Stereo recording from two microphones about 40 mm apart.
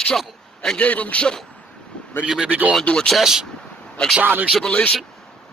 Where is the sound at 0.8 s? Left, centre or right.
Left.